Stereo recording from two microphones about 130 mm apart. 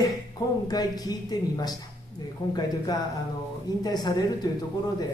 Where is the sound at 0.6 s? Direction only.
30° left (ahead or behind).